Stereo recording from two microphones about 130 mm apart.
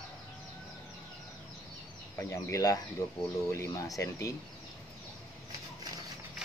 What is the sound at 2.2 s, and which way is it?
Speech, 20° left (ahead or behind).